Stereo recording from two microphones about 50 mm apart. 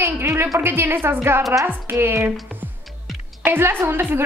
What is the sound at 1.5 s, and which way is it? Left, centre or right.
Speech, right.